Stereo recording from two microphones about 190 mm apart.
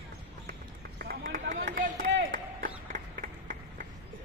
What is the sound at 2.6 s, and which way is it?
Run, 45° right (ahead or behind).